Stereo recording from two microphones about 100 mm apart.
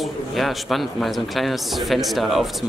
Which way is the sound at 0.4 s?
Centre (ahead or behind).